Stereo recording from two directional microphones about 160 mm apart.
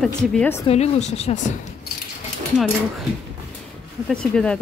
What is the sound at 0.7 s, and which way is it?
Speech, 45° left (ahead or behind).